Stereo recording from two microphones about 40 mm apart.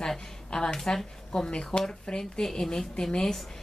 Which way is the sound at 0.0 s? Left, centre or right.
Centre.